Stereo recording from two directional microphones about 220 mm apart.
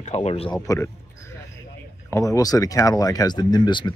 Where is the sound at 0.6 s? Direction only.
15° left (ahead or behind).